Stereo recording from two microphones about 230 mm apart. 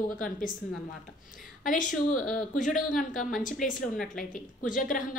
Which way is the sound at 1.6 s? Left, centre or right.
Left.